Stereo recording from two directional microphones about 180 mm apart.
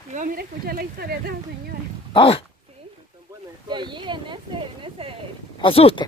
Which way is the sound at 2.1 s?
30° left (ahead or behind).